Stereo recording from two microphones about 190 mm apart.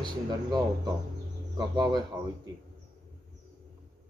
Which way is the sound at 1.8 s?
20° right (ahead or behind).